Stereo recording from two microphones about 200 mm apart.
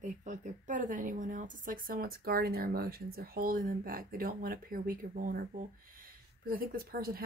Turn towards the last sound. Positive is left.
turn(degrees=-50)  # may be behind; listen again after turning